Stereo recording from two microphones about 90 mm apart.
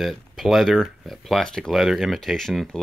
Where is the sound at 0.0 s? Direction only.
Centre (ahead or behind).